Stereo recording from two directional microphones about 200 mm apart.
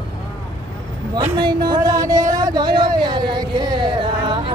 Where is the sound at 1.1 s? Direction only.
20° right (ahead or behind).